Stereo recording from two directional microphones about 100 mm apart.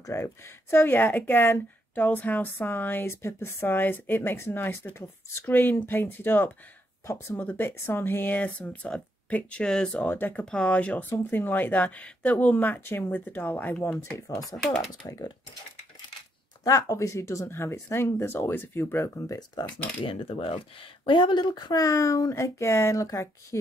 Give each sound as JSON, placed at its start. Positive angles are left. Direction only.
{"t": 0.0, "sound": "speech", "side_deg": 30}
{"t": 10.0, "sound": "speech", "side_deg": 20}
{"t": 10.4, "sound": "speech", "side_deg": 10}
{"t": 14.1, "sound": "speech", "side_deg": 35}
{"t": 14.6, "sound": "speech", "side_deg": 5}
{"t": 15.0, "sound": "speech", "side_deg": 40}
{"t": 16.6, "sound": "speech", "side_deg": 35}
{"t": 20.0, "sound": "speech", "side_deg": 65}